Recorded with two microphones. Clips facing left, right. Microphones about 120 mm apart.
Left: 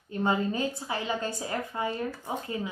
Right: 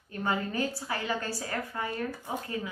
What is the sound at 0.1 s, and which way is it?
A woman's voice, 25° left (ahead or behind).